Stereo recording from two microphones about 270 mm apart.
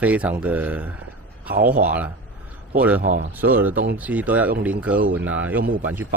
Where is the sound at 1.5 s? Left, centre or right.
Right.